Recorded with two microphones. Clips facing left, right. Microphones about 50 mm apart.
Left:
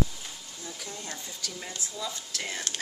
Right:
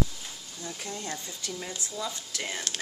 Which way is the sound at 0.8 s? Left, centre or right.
Right.